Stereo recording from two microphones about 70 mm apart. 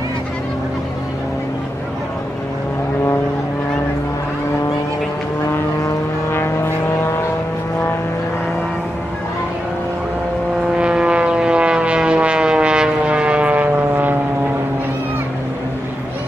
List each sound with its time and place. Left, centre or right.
6.3 s vehicle: left
10.8 s vehicle: centre